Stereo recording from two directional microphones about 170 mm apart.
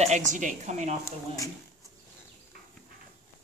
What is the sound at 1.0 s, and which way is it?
Speech, 20° left (ahead or behind).